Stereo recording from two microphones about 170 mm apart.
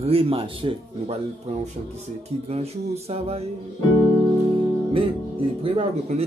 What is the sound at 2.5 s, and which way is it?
Speech, 35° right (ahead or behind).